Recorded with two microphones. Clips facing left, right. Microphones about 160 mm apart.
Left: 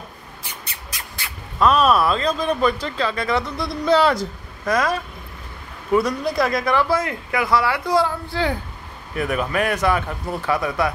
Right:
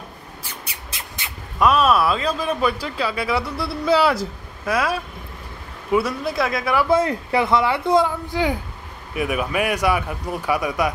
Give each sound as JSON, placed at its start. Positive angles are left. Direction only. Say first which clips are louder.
{"t": 0.9, "sound": "a sound", "louder": "even", "side_deg": -20}
{"t": 1.7, "sound": "speech", "louder": "left 1 dB", "side_deg": -5}
{"t": 6.9, "sound": "speech", "louder": "right 4 dB", "side_deg": -30}